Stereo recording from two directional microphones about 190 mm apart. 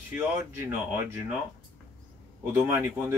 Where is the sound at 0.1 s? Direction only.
10° right (ahead or behind).